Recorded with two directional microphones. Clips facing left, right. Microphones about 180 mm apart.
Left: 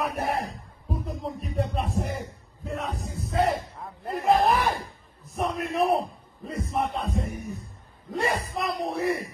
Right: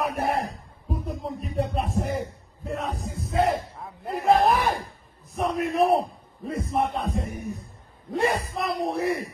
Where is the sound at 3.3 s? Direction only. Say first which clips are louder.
Right 1 dB; centre (ahead or behind).